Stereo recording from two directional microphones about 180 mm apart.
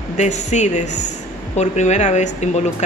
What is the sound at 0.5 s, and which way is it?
Speech, 40° left (ahead or behind).